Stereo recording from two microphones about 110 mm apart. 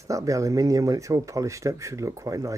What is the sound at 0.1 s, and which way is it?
Speech, 30° right (ahead or behind).